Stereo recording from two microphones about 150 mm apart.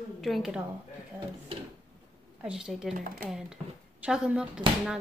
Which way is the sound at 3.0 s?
70° right (ahead or behind).